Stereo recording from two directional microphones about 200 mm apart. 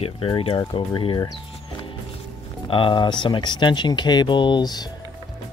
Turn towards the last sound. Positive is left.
turn(degrees=20)  # may be behind; listen again after turning